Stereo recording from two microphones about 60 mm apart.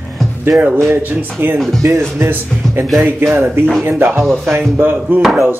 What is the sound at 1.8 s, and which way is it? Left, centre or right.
Speech, right.